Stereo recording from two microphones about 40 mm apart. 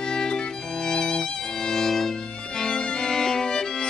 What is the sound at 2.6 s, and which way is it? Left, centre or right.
Music, left.